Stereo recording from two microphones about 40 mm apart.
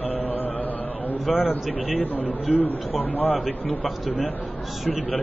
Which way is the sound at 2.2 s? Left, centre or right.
Left.